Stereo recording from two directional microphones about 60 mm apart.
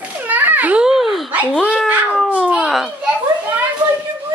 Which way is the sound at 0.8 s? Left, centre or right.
Centre.